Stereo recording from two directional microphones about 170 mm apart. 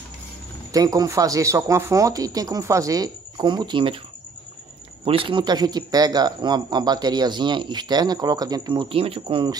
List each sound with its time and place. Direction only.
0.7 s speech: 20° right (ahead or behind)
5.0 s speech: 30° right (ahead or behind)